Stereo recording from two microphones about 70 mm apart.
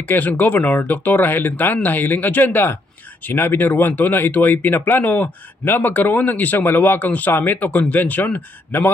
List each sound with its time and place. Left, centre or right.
0.1 s speech: left